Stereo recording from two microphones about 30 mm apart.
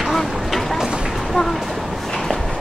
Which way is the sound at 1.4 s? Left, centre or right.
Left.